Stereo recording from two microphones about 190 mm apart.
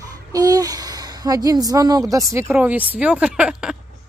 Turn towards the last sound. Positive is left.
turn(degrees=-5)  # may be behind; listen again after turning